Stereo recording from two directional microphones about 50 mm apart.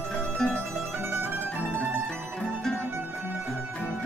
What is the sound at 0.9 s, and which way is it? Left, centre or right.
Mandolin, right.